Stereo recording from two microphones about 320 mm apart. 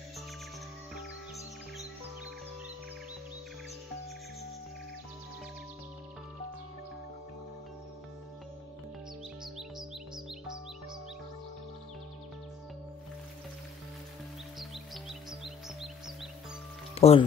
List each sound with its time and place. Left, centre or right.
9.4 s music: centre
14.6 s music: centre
16.9 s music: centre